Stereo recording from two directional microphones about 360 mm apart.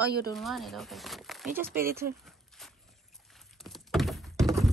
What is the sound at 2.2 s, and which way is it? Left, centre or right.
Walk, centre.